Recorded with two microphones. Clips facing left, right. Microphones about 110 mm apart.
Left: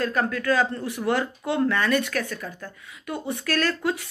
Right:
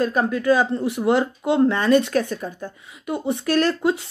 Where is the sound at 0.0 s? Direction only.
20° right (ahead or behind).